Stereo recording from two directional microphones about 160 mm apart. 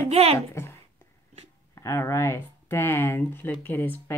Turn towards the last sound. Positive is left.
turn(degrees=10)  # may be behind; listen again after turning